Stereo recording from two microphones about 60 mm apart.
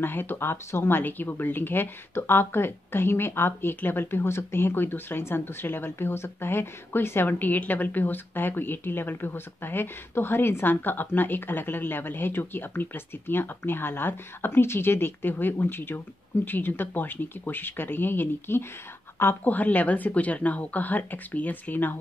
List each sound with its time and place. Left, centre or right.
0.0 s speech: left